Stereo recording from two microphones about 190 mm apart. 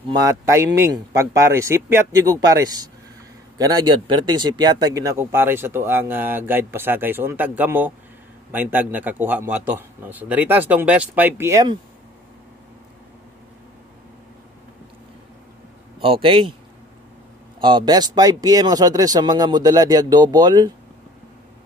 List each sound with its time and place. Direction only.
0.1 s speech: 20° right (ahead or behind)
16.0 s speech: 30° right (ahead or behind)
17.6 s speech: 25° right (ahead or behind)